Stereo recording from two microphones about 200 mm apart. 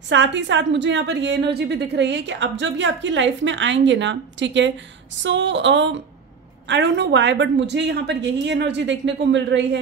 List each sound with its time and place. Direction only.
0.1 s a woman's voice: 65° right (ahead or behind)